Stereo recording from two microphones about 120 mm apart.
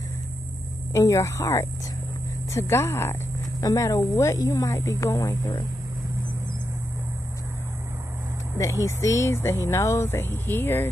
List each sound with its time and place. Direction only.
0.9 s speech: 25° left (ahead or behind)
8.5 s speech: 25° left (ahead or behind)